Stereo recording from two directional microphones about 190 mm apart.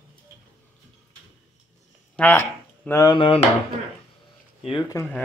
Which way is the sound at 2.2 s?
10° left (ahead or behind).